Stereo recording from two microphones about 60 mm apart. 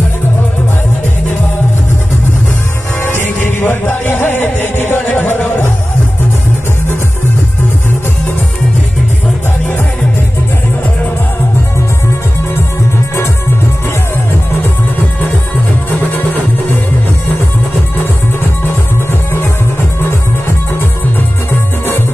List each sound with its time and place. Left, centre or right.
3.0 s music: left
21.5 s music: left